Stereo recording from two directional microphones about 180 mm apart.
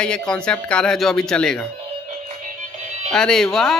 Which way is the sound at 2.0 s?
40° right (ahead or behind).